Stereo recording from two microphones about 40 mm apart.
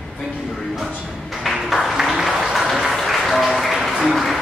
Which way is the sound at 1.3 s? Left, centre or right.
Centre.